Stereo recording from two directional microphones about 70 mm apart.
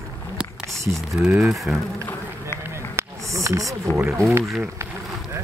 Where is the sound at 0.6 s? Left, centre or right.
Centre.